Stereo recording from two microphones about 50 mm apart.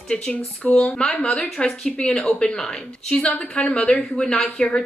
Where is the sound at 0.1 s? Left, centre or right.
Centre.